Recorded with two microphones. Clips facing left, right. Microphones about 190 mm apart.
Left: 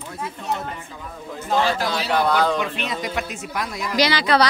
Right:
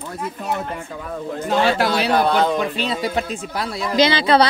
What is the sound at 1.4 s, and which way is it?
Speech, 70° right (ahead or behind).